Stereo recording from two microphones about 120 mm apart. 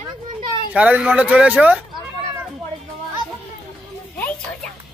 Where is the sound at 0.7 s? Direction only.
10° right (ahead or behind).